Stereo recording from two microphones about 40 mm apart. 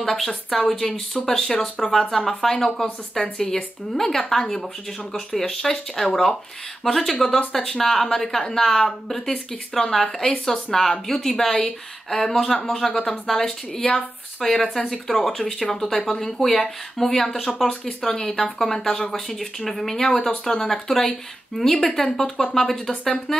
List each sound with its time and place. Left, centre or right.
0.0 s speech: centre
18.6 s speech: centre